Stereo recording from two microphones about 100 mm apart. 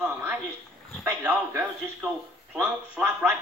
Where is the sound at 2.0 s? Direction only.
10° right (ahead or behind).